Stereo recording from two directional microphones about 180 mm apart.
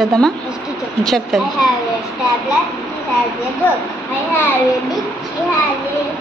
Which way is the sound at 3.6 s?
10° left (ahead or behind).